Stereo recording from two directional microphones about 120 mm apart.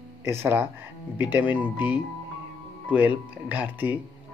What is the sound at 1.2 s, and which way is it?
Speech, 15° right (ahead or behind).